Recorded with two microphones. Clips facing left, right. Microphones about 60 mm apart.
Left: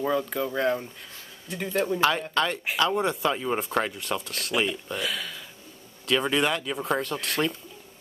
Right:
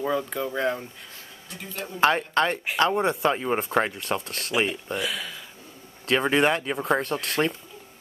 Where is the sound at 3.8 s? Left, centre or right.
Right.